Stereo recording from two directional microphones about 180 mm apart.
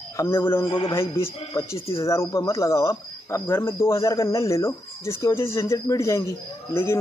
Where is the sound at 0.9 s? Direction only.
15° left (ahead or behind).